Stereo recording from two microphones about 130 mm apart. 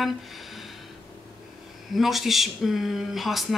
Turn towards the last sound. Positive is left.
turn(degrees=0)  # may be behind; listen again after turning